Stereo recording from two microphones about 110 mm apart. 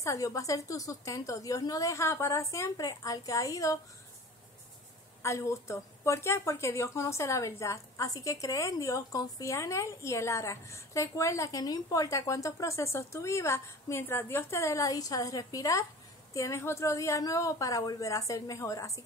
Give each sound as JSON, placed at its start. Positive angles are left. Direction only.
{"t": 0.0, "sound": "a woman's voice", "side_deg": 30}
{"t": 5.2, "sound": "speech", "side_deg": 25}